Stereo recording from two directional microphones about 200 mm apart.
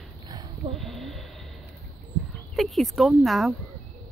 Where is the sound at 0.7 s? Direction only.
Centre (ahead or behind).